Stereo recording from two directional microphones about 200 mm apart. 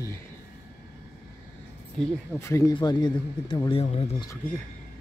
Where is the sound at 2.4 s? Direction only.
15° left (ahead or behind); by 4.3 s 30° left (ahead or behind).